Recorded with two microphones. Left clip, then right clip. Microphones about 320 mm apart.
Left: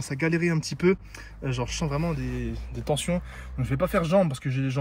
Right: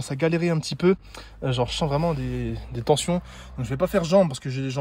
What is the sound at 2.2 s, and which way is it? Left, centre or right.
Speech, right.